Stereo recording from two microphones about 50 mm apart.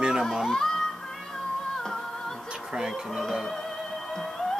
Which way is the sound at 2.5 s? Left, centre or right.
Centre.